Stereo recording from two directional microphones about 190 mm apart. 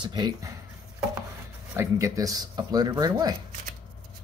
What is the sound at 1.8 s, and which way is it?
Speech, 15° right (ahead or behind).